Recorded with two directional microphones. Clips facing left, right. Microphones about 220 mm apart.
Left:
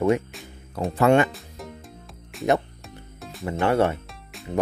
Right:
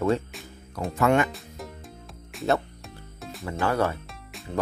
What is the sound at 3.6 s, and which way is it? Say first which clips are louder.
Speech: left 4 dB; 25° left (ahead or behind).